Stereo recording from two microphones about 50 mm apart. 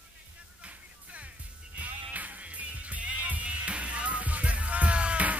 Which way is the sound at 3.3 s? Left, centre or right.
Right.